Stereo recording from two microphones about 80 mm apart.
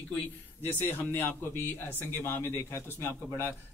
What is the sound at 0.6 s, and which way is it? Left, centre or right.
A man's voice, left.